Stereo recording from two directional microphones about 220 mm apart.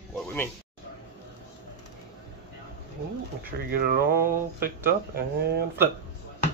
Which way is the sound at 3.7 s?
40° right (ahead or behind).